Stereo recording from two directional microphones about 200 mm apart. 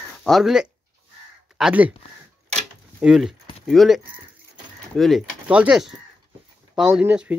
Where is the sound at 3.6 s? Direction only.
Centre (ahead or behind).